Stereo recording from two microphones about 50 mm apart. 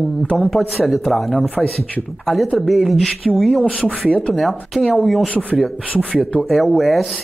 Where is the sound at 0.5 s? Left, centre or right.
Centre.